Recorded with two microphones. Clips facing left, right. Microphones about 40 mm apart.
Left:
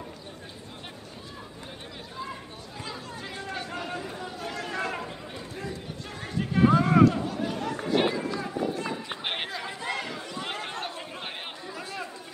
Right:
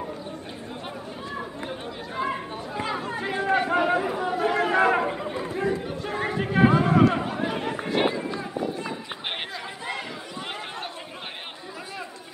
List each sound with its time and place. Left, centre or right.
2.8 s chatter: right
6.2 s a sound: right
7.2 s chatter: right
7.9 s run: centre
8.5 s chatter: centre